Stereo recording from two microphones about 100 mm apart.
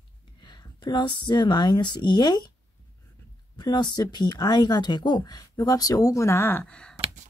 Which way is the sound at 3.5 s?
45° left (ahead or behind).